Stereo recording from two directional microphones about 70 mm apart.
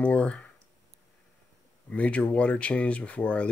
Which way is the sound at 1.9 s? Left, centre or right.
Centre.